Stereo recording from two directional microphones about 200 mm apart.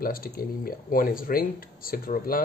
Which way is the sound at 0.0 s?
45° left (ahead or behind).